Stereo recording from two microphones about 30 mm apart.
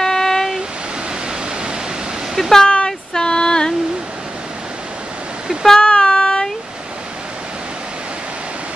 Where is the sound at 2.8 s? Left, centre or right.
Left.